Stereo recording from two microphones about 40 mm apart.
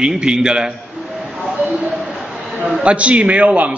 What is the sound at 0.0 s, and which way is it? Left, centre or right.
Speech, centre.